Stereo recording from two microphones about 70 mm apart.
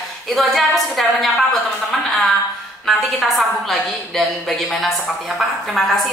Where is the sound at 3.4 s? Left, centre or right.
Centre.